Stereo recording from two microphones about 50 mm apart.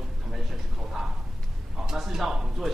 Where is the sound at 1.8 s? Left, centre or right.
Centre.